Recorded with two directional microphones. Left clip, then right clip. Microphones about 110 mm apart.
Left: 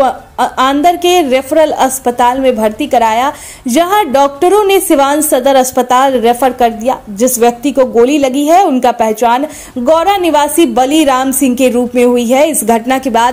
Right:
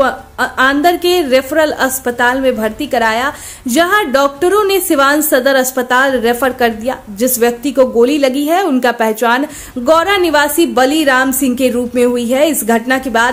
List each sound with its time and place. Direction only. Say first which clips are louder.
0.0 s a woman's voice: left 3 dB; 20° left (ahead or behind)